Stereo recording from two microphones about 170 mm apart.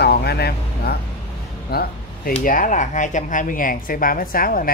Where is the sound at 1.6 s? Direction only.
65° left (ahead or behind).